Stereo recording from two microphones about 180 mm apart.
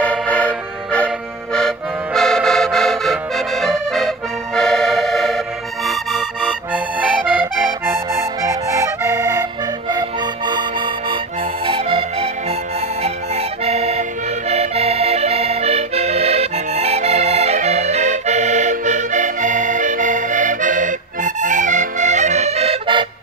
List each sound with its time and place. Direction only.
0.0 s music: 5° left (ahead or behind)
5.9 s accordion: 5° right (ahead or behind)
9.1 s music: 20° right (ahead or behind)
11.6 s music: 30° right (ahead or behind)
13.7 s accordion: 35° right (ahead or behind)